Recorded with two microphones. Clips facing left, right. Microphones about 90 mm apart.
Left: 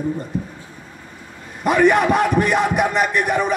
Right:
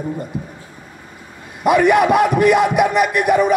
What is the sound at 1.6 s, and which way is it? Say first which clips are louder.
Speech: right 2 dB; 40° left (ahead or behind).